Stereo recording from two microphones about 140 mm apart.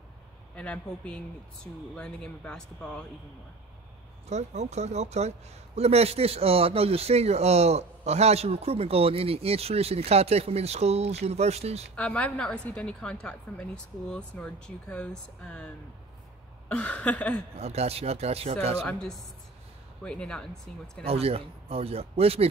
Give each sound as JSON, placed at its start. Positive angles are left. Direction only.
{"t": 0.6, "sound": "a woman's voice", "side_deg": 10}
{"t": 4.3, "sound": "speech", "side_deg": -55}
{"t": 11.9, "sound": "a woman's voice", "side_deg": 10}
{"t": 17.6, "sound": "speech", "side_deg": -50}
{"t": 18.8, "sound": "speech", "side_deg": 5}
{"t": 21.0, "sound": "speech", "side_deg": -45}